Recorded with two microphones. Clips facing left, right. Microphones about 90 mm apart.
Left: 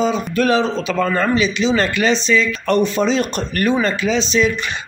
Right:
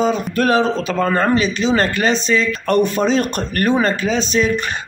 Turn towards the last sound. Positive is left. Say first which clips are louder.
# even
turn(degrees=-40)  # may be behind; listen again after turning